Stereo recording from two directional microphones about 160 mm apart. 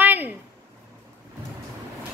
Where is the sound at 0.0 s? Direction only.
10° right (ahead or behind).